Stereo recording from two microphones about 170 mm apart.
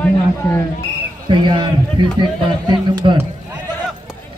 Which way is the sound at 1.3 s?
30° right (ahead or behind).